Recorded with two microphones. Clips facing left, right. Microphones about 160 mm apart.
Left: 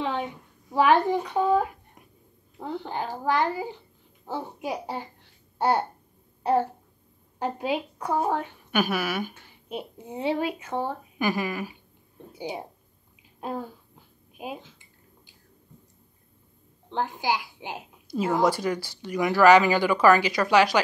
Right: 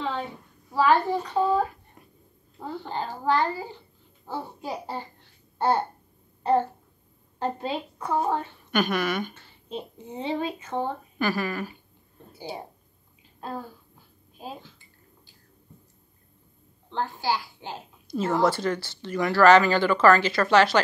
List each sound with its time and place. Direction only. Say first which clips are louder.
0.0 s a sound: left 2 dB; 15° left (ahead or behind)
0.7 s a child's voice: left 1 dB; 20° left (ahead or behind)
7.3 s a woman's voice: left 1 dB; 10° left (ahead or behind)
13.4 s a sound: left 3 dB; 15° left (ahead or behind)
14.3 s speech: left 3 dB; 15° left (ahead or behind)
16.9 s a woman's voice: left 1 dB; 15° left (ahead or behind)